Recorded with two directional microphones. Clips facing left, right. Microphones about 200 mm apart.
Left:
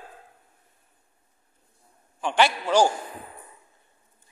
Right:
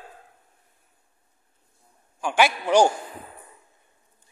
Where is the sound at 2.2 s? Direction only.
10° right (ahead or behind).